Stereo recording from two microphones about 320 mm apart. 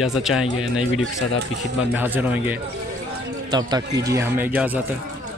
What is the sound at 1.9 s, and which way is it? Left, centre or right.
Speech, centre.